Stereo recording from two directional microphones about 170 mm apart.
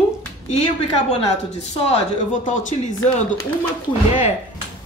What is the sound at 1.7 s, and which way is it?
Speech, 45° left (ahead or behind).